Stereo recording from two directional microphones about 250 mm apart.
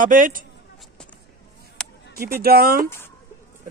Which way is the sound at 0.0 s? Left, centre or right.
Right.